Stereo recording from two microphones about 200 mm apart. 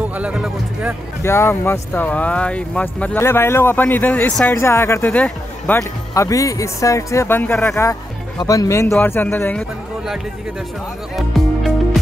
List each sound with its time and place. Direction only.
0.2 s speech: 5° right (ahead or behind)
1.2 s speech: 10° left (ahead or behind)
11.1 s music: centre (ahead or behind)